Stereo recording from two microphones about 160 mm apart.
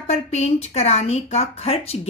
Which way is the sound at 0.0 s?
45° left (ahead or behind).